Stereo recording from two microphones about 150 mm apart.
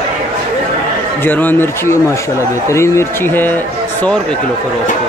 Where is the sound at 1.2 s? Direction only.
15° left (ahead or behind).